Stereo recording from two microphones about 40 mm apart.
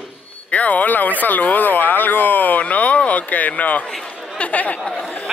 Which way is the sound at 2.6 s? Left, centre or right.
Left.